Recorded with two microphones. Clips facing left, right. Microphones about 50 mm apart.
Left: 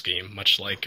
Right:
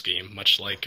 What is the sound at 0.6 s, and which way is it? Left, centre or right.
Speech, left.